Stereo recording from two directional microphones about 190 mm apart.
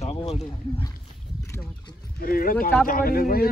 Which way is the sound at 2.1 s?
50° left (ahead or behind).